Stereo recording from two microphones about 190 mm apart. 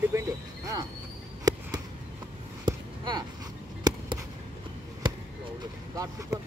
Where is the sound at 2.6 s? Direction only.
25° right (ahead or behind).